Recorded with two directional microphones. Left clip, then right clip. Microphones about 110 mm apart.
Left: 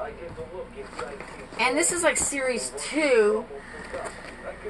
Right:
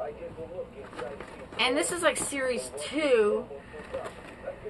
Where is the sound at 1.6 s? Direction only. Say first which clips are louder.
Left 3 dB; 30° right (ahead or behind).